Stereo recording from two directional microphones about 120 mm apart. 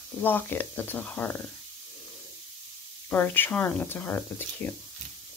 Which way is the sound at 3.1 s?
15° left (ahead or behind).